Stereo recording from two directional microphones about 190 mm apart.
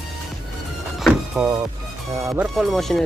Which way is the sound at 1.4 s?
10° right (ahead or behind).